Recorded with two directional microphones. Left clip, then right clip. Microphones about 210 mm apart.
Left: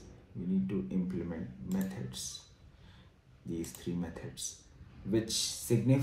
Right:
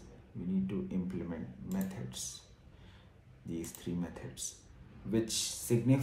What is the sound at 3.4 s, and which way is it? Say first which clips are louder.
Speech: left 2 dB; 10° right (ahead or behind).